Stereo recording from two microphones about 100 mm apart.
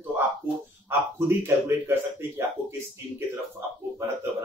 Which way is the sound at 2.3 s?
30° right (ahead or behind).